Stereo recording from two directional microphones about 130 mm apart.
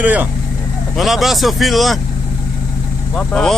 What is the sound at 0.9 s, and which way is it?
Speech, centre (ahead or behind).